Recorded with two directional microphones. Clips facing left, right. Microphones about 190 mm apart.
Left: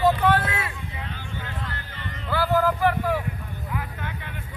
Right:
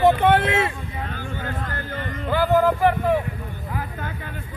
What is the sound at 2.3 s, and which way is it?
Speech, 20° right (ahead or behind).